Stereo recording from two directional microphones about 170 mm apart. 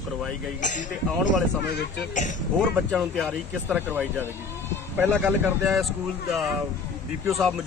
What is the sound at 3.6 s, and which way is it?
Speech, 10° right (ahead or behind).